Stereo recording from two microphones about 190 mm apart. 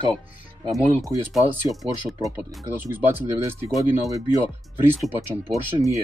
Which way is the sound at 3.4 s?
10° right (ahead or behind).